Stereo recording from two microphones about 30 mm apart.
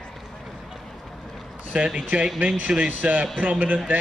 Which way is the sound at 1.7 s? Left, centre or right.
Right.